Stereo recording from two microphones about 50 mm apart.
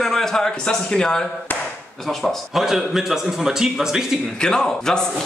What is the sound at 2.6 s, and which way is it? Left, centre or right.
A man's voice, centre.